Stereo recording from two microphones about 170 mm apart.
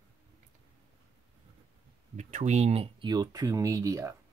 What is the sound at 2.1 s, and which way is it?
Speech, 40° right (ahead or behind).